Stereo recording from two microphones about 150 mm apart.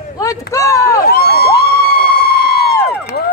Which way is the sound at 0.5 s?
20° left (ahead or behind).